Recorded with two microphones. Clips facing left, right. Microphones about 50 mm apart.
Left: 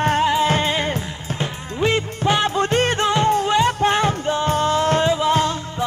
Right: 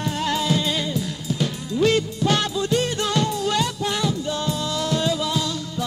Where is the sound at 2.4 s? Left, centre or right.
Left.